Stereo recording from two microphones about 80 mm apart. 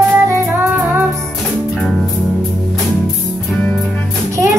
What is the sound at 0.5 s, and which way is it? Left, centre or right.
Music, right.